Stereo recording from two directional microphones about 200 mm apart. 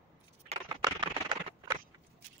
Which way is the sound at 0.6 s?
20° right (ahead or behind).